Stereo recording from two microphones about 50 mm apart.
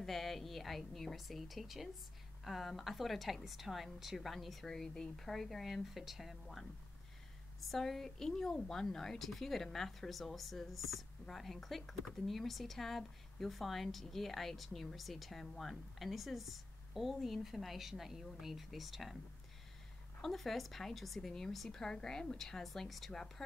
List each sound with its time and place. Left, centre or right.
0.0 s speech: centre
4.6 s speech: centre
7.6 s speech: centre
20.2 s speech: centre